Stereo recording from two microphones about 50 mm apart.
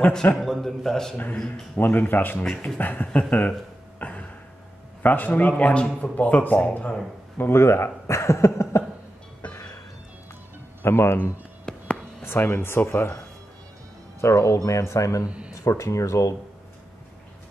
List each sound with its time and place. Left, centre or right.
0.1 s a man's voice: left
0.4 s a sound: centre
1.8 s a man's voice: left
4.0 s a sound: left
5.0 s a man's voice: left
7.3 s speech: left
10.8 s speech: left
11.7 s a sound: centre
12.2 s speech: left
14.2 s speech: left
15.2 s speech: right
15.5 s speech: left